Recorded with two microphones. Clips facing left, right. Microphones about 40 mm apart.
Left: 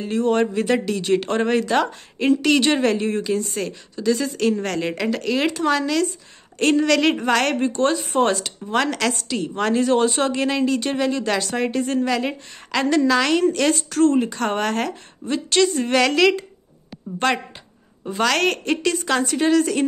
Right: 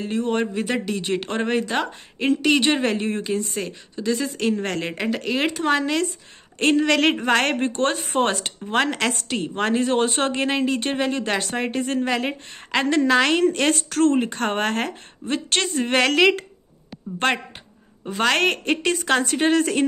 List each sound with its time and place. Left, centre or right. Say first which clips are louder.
0.0 s speech: left 4 dB; centre; by 7.7 s right
7.7 s speech: left 2 dB; right
13.7 s speech: left 2 dB; right
14.1 s speech: left 1 dB; right
18.2 s speech: even; right